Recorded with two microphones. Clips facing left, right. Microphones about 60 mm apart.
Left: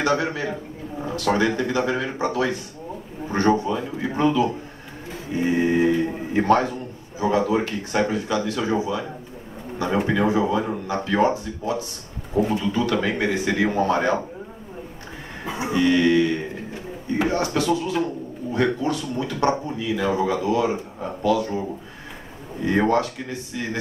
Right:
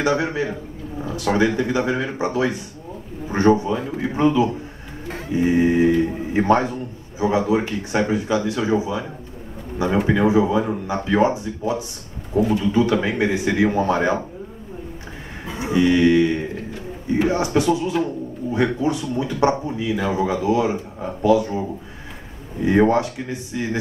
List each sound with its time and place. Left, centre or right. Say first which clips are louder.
0.0 s speech: right 2 dB; right
15.7 s speech: right 3 dB; centre
22.7 s speech: right 3 dB; centre